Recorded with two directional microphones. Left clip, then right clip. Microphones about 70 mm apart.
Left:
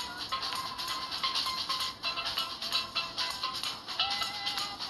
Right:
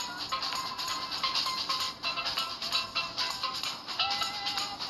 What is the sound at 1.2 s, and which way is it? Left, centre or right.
Music, right.